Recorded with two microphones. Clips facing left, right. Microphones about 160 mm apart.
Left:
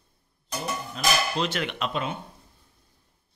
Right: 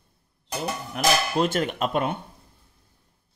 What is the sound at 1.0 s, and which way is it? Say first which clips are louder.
Dishes: right 4 dB; 45° right (ahead or behind).